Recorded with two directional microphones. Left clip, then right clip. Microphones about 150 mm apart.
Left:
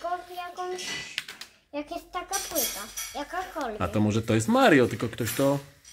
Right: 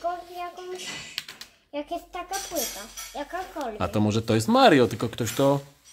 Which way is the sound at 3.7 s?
5° right (ahead or behind).